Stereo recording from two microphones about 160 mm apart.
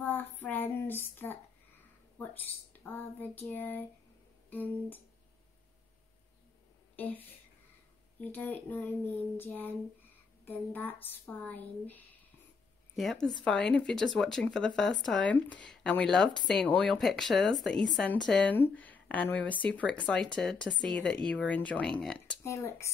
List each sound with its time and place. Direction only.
0.0 s a sound: 10° left (ahead or behind)
2.1 s speech: 10° left (ahead or behind)
7.0 s speech: 10° left (ahead or behind)
22.4 s speech: 15° left (ahead or behind)